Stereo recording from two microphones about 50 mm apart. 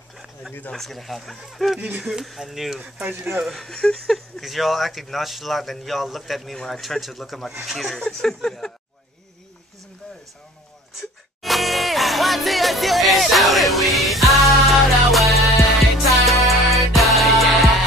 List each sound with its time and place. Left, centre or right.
0.1 s a sound: centre
0.7 s a man's voice: centre
2.8 s speech: right
3.5 s speech: centre
4.4 s a man's voice: centre
7.9 s speech: centre
11.4 s music: centre